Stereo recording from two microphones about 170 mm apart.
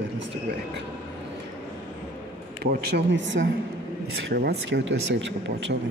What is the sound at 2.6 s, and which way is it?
Speech, 70° right (ahead or behind).